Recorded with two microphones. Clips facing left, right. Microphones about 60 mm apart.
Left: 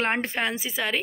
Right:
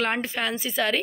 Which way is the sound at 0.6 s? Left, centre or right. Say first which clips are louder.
Right 3 dB; centre.